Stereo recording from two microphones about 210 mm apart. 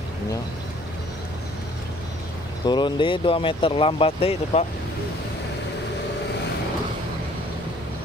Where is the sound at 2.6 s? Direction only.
20° left (ahead or behind).